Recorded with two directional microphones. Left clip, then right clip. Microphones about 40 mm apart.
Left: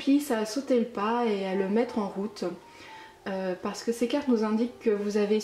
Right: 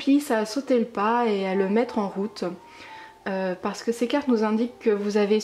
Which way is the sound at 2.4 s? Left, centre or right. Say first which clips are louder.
Right 1 dB; right.